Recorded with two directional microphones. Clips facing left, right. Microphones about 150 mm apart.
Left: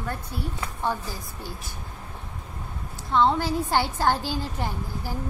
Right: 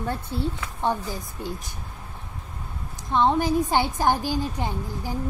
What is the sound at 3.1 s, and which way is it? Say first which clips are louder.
A woman's voice: right 1 dB; 15° right (ahead or behind).